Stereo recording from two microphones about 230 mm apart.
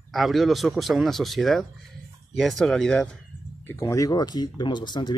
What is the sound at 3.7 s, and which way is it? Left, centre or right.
Speech, centre.